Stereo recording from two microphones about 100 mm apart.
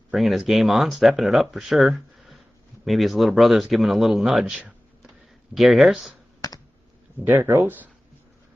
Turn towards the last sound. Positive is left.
turn(degrees=-20)  # may be behind; listen again after turning